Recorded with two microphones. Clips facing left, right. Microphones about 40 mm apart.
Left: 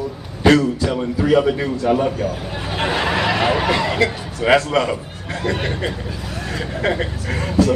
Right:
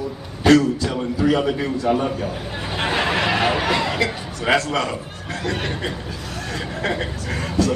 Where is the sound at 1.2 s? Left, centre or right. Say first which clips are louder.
Left 3 dB; centre.